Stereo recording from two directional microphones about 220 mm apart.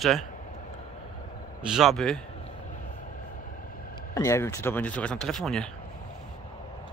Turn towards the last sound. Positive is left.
turn(degrees=0)  # may be behind; listen again after turning